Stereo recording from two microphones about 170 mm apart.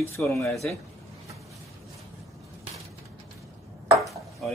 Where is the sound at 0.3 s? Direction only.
15° left (ahead or behind).